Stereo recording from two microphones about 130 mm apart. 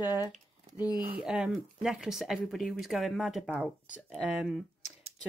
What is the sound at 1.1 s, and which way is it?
Speech, 5° right (ahead or behind).